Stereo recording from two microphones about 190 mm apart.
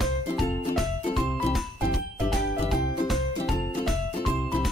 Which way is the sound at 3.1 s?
Centre (ahead or behind).